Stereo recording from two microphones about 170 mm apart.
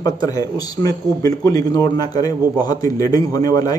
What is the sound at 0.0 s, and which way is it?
A man's voice, 20° left (ahead or behind).